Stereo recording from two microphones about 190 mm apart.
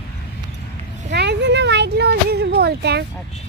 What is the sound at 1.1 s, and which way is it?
Speech, 65° right (ahead or behind).